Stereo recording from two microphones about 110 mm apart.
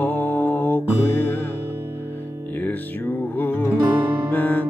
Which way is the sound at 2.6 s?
15° left (ahead or behind).